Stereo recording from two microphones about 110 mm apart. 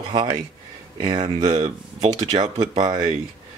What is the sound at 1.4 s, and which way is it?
Speech, 80° right.